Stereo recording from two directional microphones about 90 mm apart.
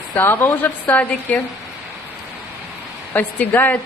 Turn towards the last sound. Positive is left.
turn(degrees=20)  # may be behind; listen again after turning